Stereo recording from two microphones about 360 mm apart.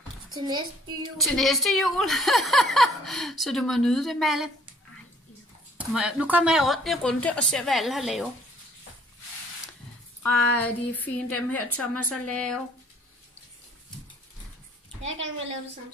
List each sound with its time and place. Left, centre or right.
0.4 s child singing: centre
1.1 s speech: centre
5.8 s speech: centre
10.5 s speech: centre
15.0 s a woman's voice: right